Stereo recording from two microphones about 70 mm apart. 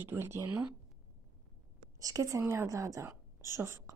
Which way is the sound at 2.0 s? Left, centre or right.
Right.